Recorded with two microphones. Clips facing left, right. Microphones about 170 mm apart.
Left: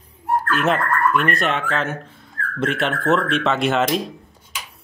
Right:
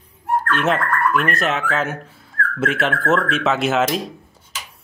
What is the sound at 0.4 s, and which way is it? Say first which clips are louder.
Speech: even; centre (ahead or behind).